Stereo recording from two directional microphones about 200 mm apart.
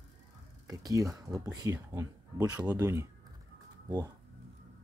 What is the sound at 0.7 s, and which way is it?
Speech, 15° right (ahead or behind).